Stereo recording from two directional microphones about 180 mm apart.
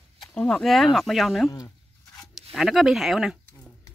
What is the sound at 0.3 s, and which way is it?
Speech, 5° left (ahead or behind).